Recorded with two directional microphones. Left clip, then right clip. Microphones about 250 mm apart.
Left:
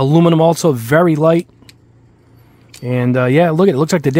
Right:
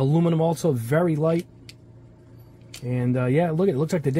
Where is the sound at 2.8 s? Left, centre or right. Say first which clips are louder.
Left 11 dB; left.